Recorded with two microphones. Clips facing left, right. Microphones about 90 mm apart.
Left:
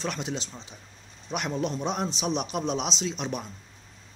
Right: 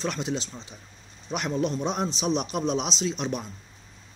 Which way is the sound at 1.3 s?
5° left (ahead or behind).